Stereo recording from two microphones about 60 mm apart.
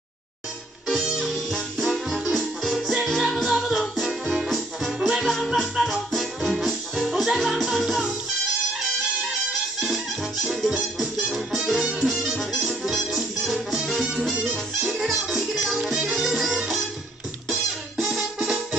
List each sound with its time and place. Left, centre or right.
1.0 s music: centre
9.8 s music: centre